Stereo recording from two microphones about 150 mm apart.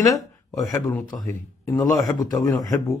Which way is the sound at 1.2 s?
20° left (ahead or behind).